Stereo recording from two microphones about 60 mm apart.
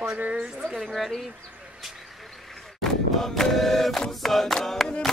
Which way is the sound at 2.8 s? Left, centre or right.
Centre.